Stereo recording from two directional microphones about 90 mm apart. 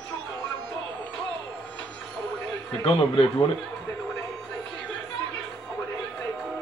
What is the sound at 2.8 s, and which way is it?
Speech, 90° left.